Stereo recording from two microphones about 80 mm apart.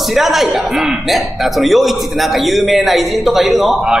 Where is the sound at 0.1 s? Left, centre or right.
Centre.